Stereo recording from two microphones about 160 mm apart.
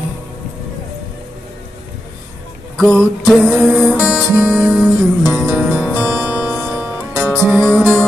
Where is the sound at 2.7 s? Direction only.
5° left (ahead or behind).